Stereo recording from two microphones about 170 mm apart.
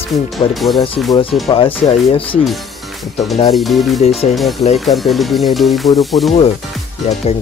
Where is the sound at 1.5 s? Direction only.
35° left (ahead or behind).